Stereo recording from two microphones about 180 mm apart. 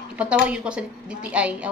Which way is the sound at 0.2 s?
5° right (ahead or behind).